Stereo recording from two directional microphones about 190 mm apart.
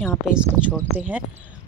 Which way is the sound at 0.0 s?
Centre (ahead or behind).